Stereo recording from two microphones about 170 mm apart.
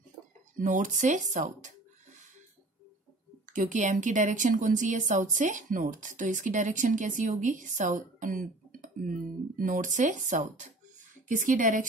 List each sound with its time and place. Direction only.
0.6 s a woman's voice: 50° right (ahead or behind)
3.4 s a woman's voice: 50° right (ahead or behind)